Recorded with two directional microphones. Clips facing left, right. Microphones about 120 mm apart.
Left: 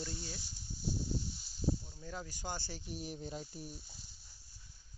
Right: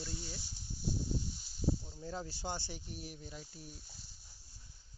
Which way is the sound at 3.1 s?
30° left (ahead or behind).